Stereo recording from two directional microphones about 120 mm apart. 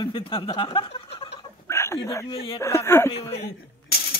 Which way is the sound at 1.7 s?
25° left (ahead or behind).